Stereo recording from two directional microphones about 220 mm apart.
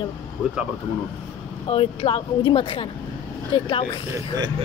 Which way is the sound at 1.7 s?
25° left (ahead or behind).